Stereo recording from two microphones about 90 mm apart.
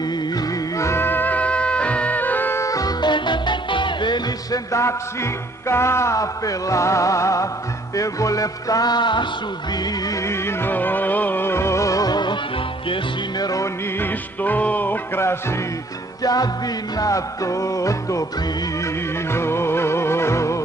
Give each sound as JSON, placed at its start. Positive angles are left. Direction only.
{"t": 0.7, "sound": "music", "side_deg": 30}
{"t": 2.6, "sound": "music", "side_deg": 40}
{"t": 3.0, "sound": "music", "side_deg": 60}
{"t": 4.5, "sound": "music", "side_deg": 35}
{"t": 10.2, "sound": "music", "side_deg": 20}
{"t": 13.4, "sound": "music", "side_deg": 40}
{"t": 14.4, "sound": "music", "side_deg": 20}
{"t": 16.2, "sound": "music", "side_deg": 45}
{"t": 19.3, "sound": "music", "side_deg": 30}